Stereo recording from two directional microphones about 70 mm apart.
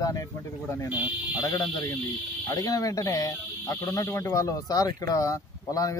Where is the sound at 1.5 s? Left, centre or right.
Left.